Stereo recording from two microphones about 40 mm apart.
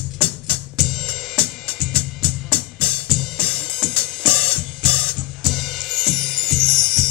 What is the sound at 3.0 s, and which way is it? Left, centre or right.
Music, centre.